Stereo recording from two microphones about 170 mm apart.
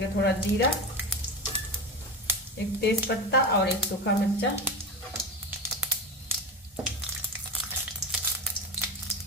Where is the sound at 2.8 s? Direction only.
75° left (ahead or behind).